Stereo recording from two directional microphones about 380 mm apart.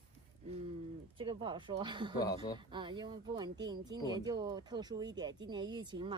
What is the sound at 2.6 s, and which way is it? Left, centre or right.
Speech, centre.